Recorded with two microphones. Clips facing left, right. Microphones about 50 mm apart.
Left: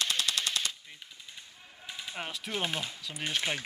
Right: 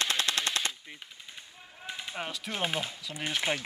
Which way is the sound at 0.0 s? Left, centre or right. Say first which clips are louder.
Right 2 dB; right.